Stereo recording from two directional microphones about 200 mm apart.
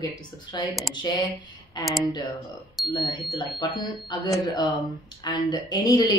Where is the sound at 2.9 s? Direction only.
20° left (ahead or behind).